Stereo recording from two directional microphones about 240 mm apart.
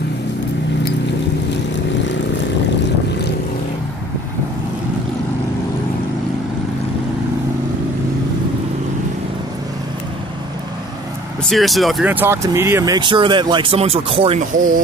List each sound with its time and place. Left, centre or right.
11.4 s speech: centre; by 14.8 s right